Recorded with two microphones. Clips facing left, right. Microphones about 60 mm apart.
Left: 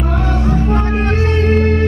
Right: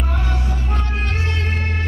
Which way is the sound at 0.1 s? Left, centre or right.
Left.